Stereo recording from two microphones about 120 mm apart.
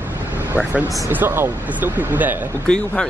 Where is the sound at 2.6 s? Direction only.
5° left (ahead or behind).